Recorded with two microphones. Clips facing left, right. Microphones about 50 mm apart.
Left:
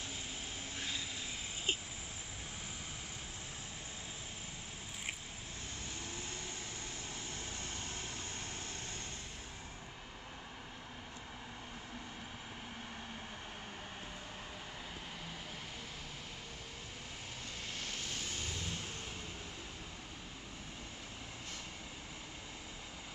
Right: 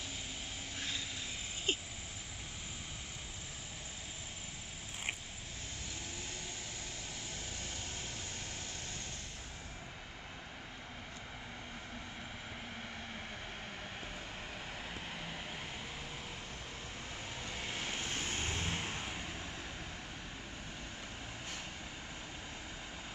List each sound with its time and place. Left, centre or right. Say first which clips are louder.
1.7 s vehicle: right 1 dB; centre
17.6 s vehicle: right 4 dB; right